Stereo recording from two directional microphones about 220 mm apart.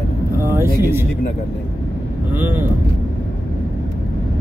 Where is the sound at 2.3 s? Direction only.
10° right (ahead or behind).